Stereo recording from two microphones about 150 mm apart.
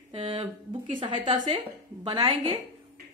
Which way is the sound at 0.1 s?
45° right (ahead or behind).